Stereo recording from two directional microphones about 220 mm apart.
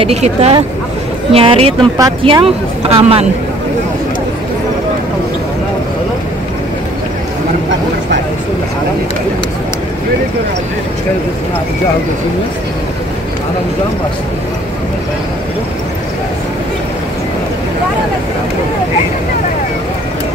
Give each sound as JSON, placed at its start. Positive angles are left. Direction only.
{"t": 0.0, "sound": "speech", "side_deg": -30}